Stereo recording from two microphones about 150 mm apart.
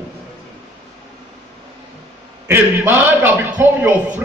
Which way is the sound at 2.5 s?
15° right (ahead or behind).